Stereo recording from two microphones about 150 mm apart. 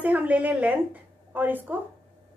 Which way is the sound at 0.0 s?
10° right (ahead or behind).